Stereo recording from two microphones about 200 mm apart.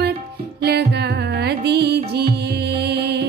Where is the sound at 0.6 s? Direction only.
55° right (ahead or behind).